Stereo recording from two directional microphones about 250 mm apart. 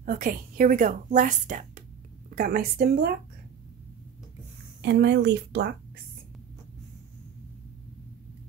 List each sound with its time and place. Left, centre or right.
0.0 s a woman's voice: right
4.8 s speech: right